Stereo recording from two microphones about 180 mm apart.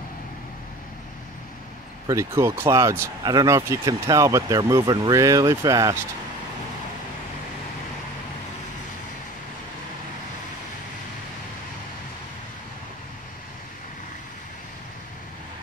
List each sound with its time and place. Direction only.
2.0 s speech: 15° right (ahead or behind)